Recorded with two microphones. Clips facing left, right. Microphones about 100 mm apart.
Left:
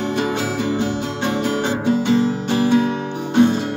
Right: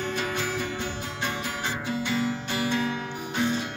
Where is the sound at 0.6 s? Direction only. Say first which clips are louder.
Left 11 dB; 70° left (ahead or behind).